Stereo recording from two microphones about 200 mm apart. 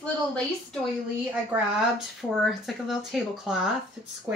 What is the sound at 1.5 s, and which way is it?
A woman's voice, 10° right (ahead or behind).